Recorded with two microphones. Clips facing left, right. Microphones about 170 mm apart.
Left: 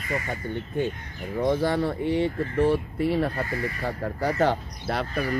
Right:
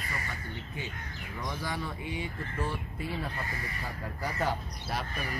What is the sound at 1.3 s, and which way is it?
Speech, 55° left (ahead or behind).